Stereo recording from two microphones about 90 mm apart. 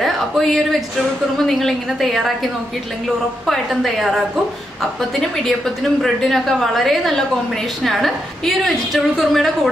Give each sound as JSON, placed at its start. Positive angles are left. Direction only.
{"t": 0.0, "sound": "a woman's voice", "side_deg": 0}
{"t": 3.4, "sound": "a woman's voice", "side_deg": 0}
{"t": 6.0, "sound": "a woman's voice", "side_deg": 0}